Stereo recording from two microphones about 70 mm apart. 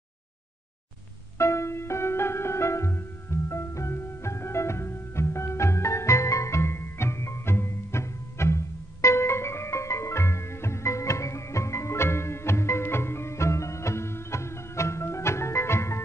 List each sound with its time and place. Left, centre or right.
1.4 s music: left